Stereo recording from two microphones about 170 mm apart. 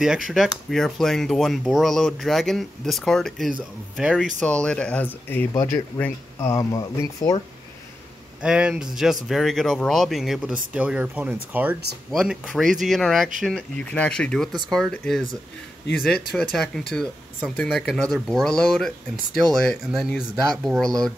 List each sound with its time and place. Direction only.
0.0 s speech: centre (ahead or behind)
4.4 s speech: 5° left (ahead or behind)
8.4 s speech: 5° right (ahead or behind)